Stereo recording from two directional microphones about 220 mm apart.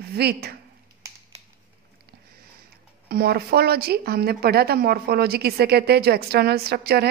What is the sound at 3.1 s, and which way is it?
Speech, 45° right (ahead or behind).